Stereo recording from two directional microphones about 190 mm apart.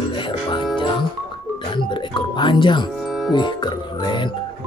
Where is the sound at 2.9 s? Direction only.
Centre (ahead or behind).